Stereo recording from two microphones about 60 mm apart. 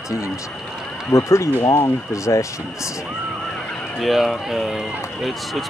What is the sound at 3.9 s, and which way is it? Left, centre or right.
Speech, centre.